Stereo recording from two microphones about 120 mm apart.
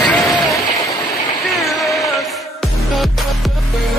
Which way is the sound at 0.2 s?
25° left (ahead or behind).